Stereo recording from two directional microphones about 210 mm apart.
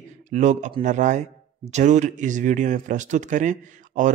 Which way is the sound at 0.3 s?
35° right (ahead or behind).